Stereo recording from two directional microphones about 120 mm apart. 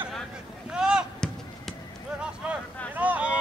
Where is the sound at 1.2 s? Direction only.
5° left (ahead or behind).